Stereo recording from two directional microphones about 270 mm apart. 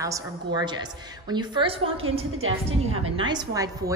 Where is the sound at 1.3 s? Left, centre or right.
Centre.